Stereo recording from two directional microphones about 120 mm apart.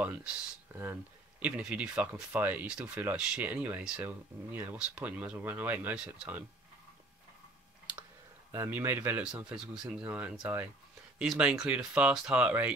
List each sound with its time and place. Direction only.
0.0 s speech: 10° right (ahead or behind)
0.7 s a sound: 20° right (ahead or behind)
1.4 s speech: 10° right (ahead or behind)
8.5 s speech: 20° right (ahead or behind)